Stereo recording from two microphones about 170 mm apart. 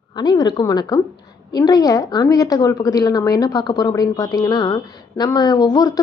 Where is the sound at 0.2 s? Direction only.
25° left (ahead or behind).